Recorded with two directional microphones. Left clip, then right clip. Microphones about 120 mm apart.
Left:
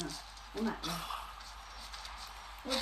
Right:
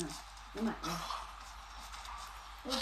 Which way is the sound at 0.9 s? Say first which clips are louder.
Even; 15° right (ahead or behind).